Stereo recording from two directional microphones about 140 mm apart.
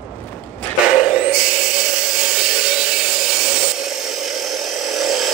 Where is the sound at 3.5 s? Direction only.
Centre (ahead or behind).